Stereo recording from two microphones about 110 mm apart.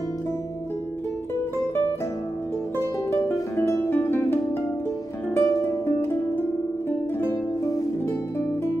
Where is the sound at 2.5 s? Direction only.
20° left (ahead or behind).